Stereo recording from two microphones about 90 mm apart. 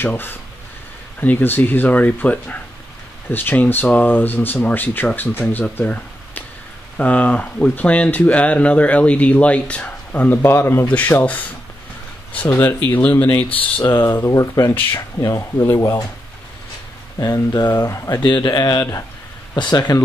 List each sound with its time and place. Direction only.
0.0 s speech: 25° left (ahead or behind)
17.2 s speech: 45° left (ahead or behind)
17.9 s speech: 35° left (ahead or behind)
18.2 s speech: 55° left (ahead or behind); by 19.0 s 40° left (ahead or behind)
19.5 s speech: 50° left (ahead or behind)